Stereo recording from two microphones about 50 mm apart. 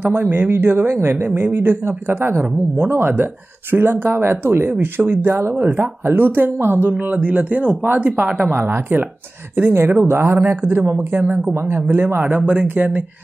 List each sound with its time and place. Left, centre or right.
0.0 s speech: right
6.9 s speech: right
11.2 s speech: right
11.5 s speech: right
12.2 s speech: right